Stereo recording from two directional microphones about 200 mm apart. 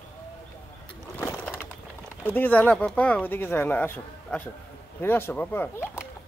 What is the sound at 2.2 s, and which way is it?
Speech, 10° left (ahead or behind).